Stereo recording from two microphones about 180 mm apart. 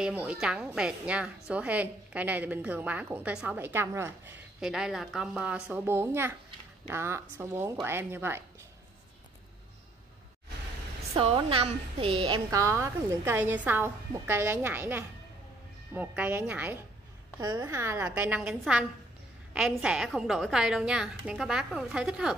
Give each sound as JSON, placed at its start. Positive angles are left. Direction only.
{"t": 0.0, "sound": "a woman's voice", "side_deg": -5}
{"t": 4.6, "sound": "a woman's voice", "side_deg": -5}
{"t": 11.1, "sound": "a woman's voice", "side_deg": -30}
{"t": 12.4, "sound": "a woman's voice", "side_deg": -15}
{"t": 17.4, "sound": "a woman's voice", "side_deg": -20}